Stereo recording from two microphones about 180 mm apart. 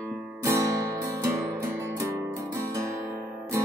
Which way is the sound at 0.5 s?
15° right (ahead or behind).